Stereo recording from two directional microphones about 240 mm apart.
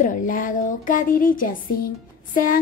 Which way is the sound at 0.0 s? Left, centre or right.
Left.